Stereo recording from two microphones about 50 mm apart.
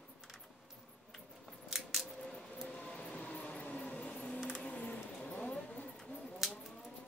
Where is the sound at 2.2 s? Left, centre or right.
Centre; by 5.4 s left.